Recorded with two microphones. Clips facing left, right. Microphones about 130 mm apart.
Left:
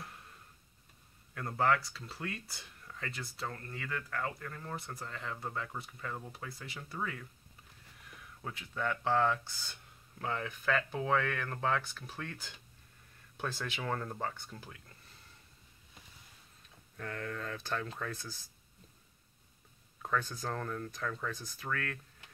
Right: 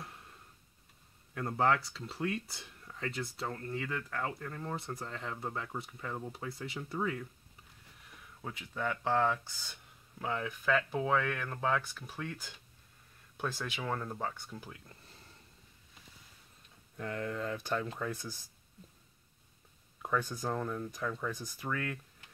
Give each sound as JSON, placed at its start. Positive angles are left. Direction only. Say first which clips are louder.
{"t": 1.3, "sound": "speech", "louder": "right 1 dB", "side_deg": -20}
{"t": 8.4, "sound": "speech", "louder": "even", "side_deg": -10}
{"t": 16.9, "sound": "speech", "louder": "right 3 dB", "side_deg": -20}
{"t": 20.0, "sound": "speech", "louder": "right 1 dB", "side_deg": -15}